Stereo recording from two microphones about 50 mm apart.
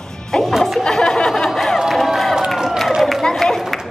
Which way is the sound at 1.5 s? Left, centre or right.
Centre.